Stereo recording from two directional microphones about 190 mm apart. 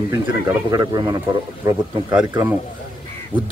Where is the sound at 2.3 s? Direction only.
15° right (ahead or behind).